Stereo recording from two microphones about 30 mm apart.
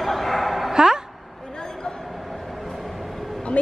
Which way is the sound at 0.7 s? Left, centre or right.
Right.